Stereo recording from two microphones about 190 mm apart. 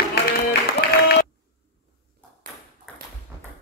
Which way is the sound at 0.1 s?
60° left (ahead or behind).